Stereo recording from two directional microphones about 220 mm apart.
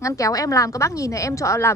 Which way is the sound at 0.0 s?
15° left (ahead or behind).